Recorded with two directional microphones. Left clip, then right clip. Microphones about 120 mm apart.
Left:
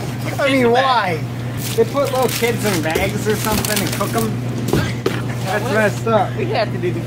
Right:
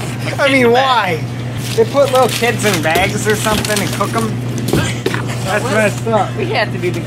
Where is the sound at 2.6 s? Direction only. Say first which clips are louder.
Right 5 dB; 15° right (ahead or behind).